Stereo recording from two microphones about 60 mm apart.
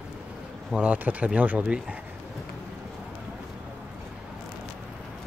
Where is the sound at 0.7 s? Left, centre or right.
Right.